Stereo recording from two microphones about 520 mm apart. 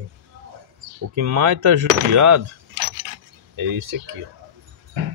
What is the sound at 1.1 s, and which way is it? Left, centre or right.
Speech, right.